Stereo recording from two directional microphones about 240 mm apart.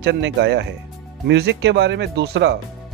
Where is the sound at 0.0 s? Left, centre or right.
Right.